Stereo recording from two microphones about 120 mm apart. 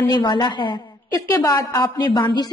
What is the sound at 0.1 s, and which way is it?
Speech, 40° left (ahead or behind).